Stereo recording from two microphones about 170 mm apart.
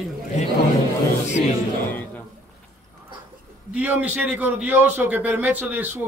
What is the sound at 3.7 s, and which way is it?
A man's voice, 10° right (ahead or behind).